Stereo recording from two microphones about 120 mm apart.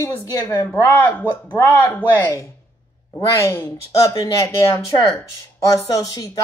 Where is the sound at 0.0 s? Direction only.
25° left (ahead or behind).